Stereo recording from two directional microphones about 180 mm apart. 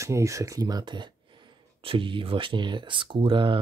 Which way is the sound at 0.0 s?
15° right (ahead or behind).